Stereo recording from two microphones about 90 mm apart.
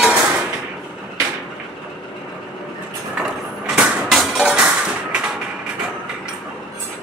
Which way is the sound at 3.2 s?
10° right (ahead or behind).